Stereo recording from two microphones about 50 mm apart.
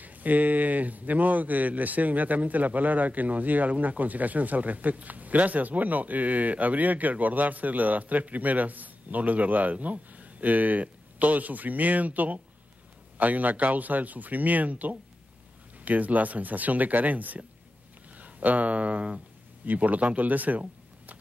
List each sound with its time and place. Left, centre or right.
0.0 s speech: right